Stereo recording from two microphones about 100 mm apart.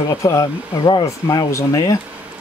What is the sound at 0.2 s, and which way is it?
Speech, 30° left (ahead or behind).